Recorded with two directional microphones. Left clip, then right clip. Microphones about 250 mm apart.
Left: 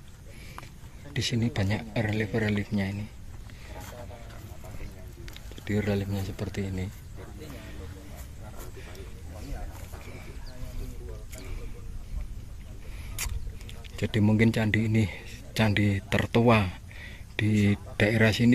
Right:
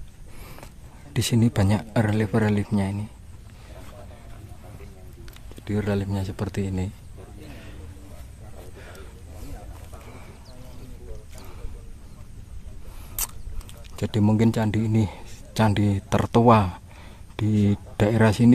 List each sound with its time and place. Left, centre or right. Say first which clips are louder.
1.1 s speech: right 6 dB; right
5.2 s speech: even; centre
13.9 s speech: right 2 dB; centre